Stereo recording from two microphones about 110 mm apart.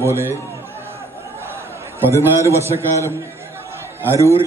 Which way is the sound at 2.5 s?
25° right (ahead or behind).